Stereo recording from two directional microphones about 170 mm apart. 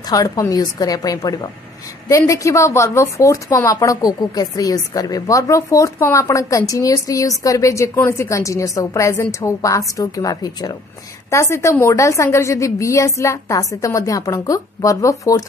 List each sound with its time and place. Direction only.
0.0 s a woman's voice: 20° left (ahead or behind)